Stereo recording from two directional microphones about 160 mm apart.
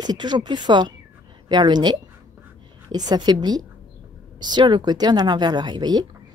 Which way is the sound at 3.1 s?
25° right (ahead or behind).